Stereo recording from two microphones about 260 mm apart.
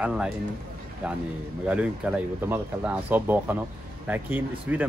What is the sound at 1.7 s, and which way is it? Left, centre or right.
A man's voice, centre.